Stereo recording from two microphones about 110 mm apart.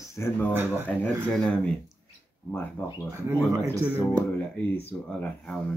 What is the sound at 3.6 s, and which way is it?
Speech, 25° right (ahead or behind).